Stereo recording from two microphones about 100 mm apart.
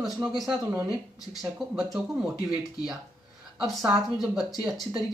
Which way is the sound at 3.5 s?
5° right (ahead or behind).